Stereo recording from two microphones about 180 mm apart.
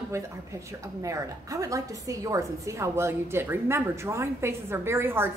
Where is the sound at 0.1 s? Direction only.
15° right (ahead or behind).